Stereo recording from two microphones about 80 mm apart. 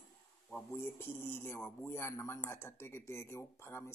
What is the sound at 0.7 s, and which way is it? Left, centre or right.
Speech, left.